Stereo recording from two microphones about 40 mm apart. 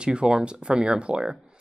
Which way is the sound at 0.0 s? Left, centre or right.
Right.